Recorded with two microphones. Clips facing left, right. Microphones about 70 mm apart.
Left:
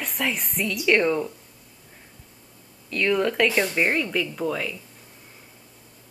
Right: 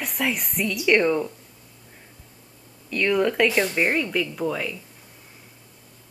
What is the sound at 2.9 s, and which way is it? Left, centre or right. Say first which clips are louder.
A woman's voice: right 1 dB; centre.